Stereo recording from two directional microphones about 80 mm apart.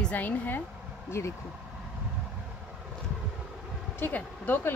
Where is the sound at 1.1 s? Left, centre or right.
Left.